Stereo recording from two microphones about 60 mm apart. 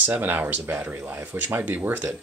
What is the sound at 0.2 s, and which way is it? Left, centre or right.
Speech, right.